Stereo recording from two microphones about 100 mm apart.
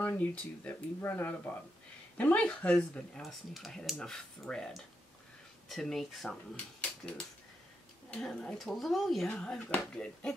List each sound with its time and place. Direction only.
0.0 s speech: 15° left (ahead or behind)
3.2 s speech: centre (ahead or behind)
9.3 s speech: 10° left (ahead or behind)